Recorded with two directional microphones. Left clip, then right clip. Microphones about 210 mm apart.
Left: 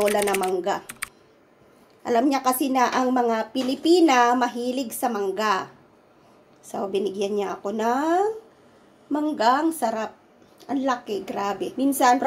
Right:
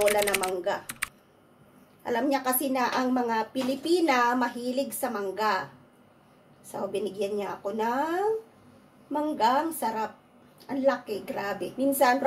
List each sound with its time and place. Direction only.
0.0 s speech: centre (ahead or behind)
2.0 s a woman's voice: 30° left (ahead or behind)
6.7 s speech: 30° left (ahead or behind)
9.4 s speech: 30° left (ahead or behind)